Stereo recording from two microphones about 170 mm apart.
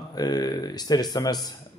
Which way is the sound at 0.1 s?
25° left (ahead or behind).